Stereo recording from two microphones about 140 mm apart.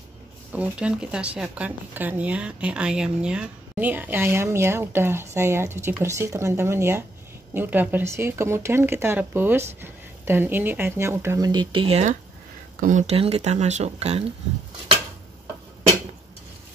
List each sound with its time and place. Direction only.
0.5 s speech: 10° right (ahead or behind); by 12.0 s 40° right (ahead or behind)
12.8 s speech: 60° right (ahead or behind)
13.1 s speech: 45° right (ahead or behind)